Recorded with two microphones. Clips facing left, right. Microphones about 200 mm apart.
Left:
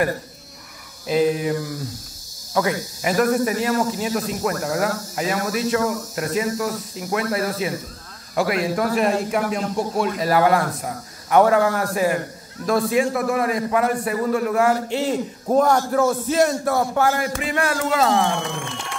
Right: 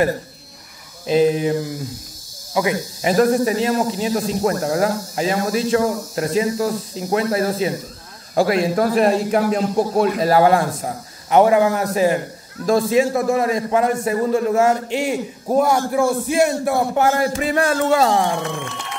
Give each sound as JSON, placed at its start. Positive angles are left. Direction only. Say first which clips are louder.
{"t": 1.0, "sound": "speech", "louder": "right 3 dB", "side_deg": -25}
{"t": 15.0, "sound": "a man's voice", "louder": "right 1 dB", "side_deg": -10}
{"t": 17.2, "sound": "speech", "louder": "right 4 dB", "side_deg": -35}